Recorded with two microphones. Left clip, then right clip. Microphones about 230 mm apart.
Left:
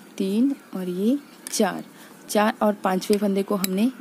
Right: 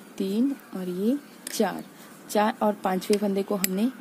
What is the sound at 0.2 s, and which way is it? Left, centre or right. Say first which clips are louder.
Speech: left 3 dB; centre.